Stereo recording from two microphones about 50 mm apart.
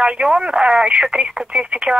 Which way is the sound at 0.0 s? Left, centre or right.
Centre.